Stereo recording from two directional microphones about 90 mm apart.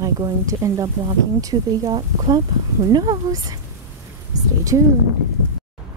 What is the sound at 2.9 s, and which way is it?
Speech, 45° right (ahead or behind).